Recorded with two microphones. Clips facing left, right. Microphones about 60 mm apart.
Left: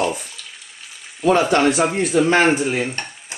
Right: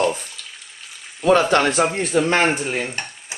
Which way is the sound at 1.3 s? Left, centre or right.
Right.